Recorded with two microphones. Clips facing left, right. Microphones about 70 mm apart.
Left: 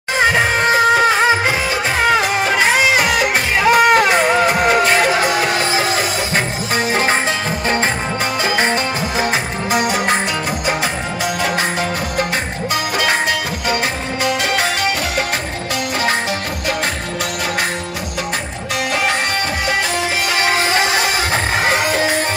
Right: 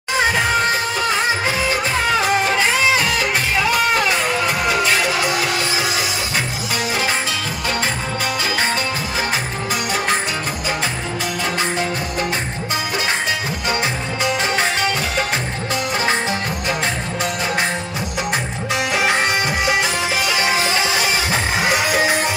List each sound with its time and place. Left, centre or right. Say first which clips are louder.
0.2 s music: left 3 dB; left
3.0 s music: left 4 dB; left
9.7 s music: left 5 dB; left
13.0 s music: left 6 dB; left
14.2 s music: left 2 dB; right
20.3 s music: left 5 dB; left